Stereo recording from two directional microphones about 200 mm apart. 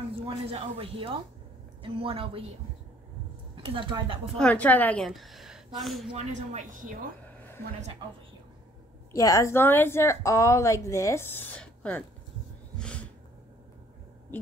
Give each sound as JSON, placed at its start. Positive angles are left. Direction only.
{"t": 0.5, "sound": "speech", "side_deg": -30}
{"t": 3.5, "sound": "speech", "side_deg": -25}
{"t": 4.4, "sound": "a woman's voice", "side_deg": 5}
{"t": 6.1, "sound": "speech", "side_deg": -35}
{"t": 7.2, "sound": "a sound", "side_deg": 10}
{"t": 9.1, "sound": "a woman's voice", "side_deg": 15}
{"t": 12.7, "sound": "a sound", "side_deg": 5}